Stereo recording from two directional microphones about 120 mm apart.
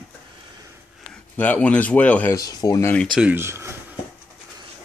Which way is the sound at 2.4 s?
30° left (ahead or behind).